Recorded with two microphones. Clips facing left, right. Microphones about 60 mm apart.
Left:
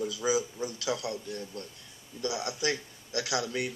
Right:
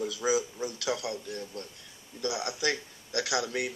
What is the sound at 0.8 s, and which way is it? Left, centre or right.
Speech, right.